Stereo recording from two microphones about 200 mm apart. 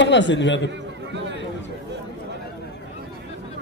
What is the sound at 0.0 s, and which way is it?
Speech, 65° left (ahead or behind).